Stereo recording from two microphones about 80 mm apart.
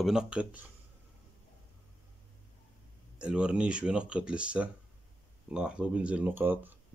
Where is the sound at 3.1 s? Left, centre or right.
Centre.